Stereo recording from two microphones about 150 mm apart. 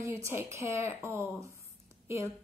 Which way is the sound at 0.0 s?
20° right (ahead or behind).